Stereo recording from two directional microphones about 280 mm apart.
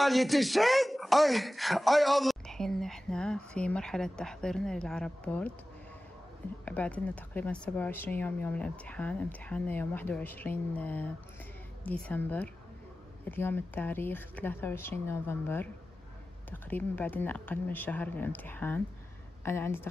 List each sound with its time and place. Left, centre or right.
0.0 s speech: centre
6.6 s speech: centre